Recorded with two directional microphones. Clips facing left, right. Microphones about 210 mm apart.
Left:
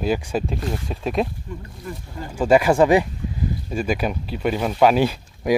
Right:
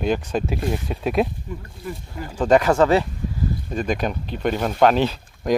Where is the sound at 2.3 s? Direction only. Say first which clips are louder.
Left 1 dB; 10° left (ahead or behind).